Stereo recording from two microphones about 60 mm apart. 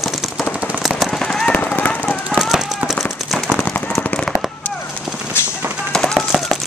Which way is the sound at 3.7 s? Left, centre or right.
Left.